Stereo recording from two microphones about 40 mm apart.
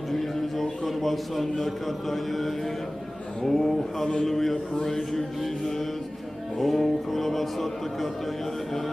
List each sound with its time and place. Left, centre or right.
0.1 s a man's voice: centre
3.4 s mantra: centre
6.6 s a man's voice: centre